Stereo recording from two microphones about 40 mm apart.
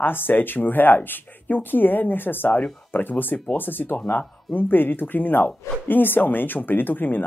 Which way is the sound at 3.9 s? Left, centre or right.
Left.